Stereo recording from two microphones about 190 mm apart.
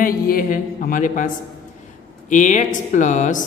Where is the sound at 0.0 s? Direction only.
45° left (ahead or behind).